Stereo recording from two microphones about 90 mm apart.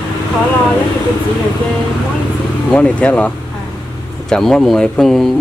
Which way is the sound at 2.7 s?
10° left (ahead or behind).